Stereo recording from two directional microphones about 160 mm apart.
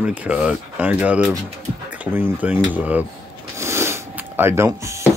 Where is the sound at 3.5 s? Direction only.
15° right (ahead or behind).